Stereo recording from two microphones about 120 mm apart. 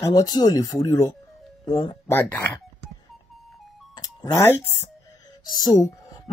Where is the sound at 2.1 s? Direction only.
20° left (ahead or behind).